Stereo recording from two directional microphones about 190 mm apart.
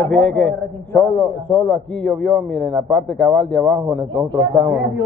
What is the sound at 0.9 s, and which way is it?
Speech, 20° left (ahead or behind).